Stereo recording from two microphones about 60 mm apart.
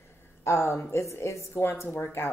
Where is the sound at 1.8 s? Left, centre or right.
Left.